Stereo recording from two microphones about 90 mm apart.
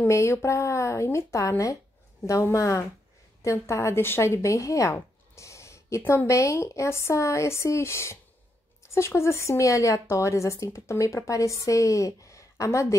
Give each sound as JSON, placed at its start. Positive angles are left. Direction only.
{"t": 0.1, "sound": "speech", "side_deg": 30}